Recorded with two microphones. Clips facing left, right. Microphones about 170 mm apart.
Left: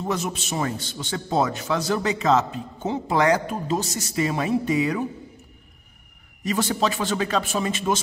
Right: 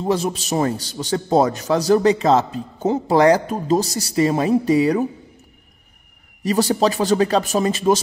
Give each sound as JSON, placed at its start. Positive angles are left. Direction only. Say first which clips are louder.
{"t": 0.0, "sound": "a man's voice", "louder": "right 6 dB", "side_deg": -30}
{"t": 6.4, "sound": "a man's voice", "louder": "right 6 dB", "side_deg": -35}